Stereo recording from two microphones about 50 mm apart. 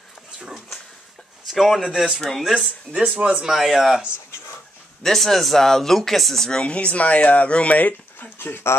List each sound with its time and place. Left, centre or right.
1.5 s speech: centre
2.4 s speech: centre
2.9 s speech: right
3.4 s speech: centre
5.0 s speech: centre
6.6 s speech: left
8.4 s speech: left